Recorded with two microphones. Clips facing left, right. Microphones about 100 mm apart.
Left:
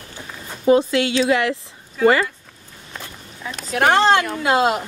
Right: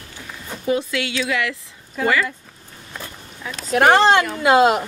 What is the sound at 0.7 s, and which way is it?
Speech, 30° left (ahead or behind).